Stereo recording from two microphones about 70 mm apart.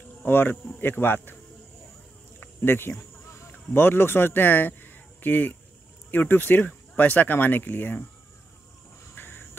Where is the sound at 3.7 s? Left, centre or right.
Left.